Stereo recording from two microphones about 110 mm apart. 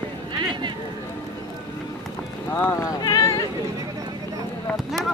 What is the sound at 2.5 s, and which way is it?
Speech, 20° left (ahead or behind).